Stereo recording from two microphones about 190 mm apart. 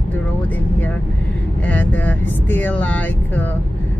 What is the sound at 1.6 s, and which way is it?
Speech, 10° left (ahead or behind).